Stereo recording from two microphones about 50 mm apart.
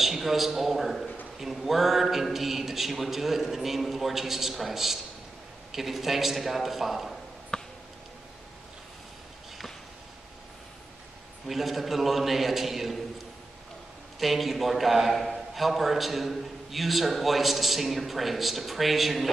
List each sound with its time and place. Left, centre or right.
0.0 s a man's voice: centre
7.5 s a sound: centre
11.4 s a man's voice: centre
14.2 s a man's voice: centre